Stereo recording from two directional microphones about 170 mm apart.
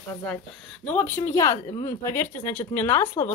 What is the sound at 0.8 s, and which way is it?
Speech, 10° left (ahead or behind).